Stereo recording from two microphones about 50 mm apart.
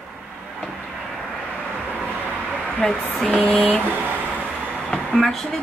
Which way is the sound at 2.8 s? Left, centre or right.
Centre.